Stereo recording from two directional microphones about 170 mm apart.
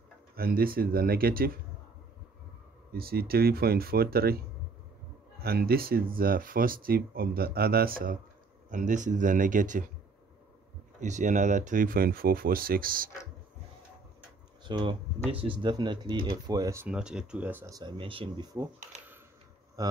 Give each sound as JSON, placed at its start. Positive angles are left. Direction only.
{"t": 0.4, "sound": "speech", "side_deg": -60}
{"t": 2.9, "sound": "speech", "side_deg": -65}
{"t": 11.0, "sound": "speech", "side_deg": -45}
{"t": 14.6, "sound": "speech", "side_deg": -25}
{"t": 19.8, "sound": "a man's voice", "side_deg": -20}